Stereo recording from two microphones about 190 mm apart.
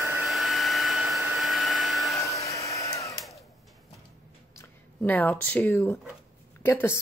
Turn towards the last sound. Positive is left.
turn(degrees=10)  # may be behind; listen again after turning